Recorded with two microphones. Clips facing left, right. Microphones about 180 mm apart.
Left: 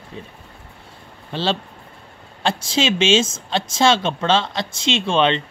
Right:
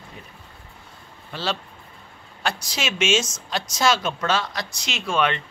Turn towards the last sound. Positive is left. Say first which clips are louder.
# left 5 dB
turn(degrees=25)  # may be behind; listen again after turning